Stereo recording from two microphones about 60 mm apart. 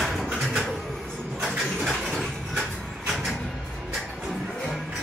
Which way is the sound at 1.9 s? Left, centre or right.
Centre.